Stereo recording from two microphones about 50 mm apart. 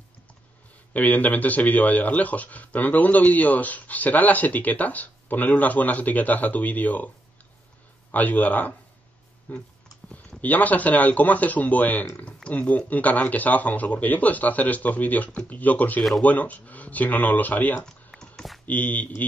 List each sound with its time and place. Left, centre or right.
0.9 s speech: left
8.1 s speech: left
17.8 s computer keyboard: centre
18.7 s speech: left